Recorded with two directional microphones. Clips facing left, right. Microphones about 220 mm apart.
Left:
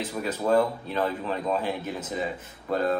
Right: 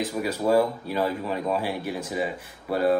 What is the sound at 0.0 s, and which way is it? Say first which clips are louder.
A man's voice: right 3 dB; 10° right (ahead or behind).